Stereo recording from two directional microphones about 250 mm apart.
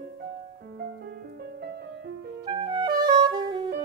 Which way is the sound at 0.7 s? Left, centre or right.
Right.